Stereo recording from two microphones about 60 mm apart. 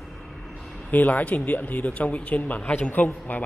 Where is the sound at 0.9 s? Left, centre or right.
Left.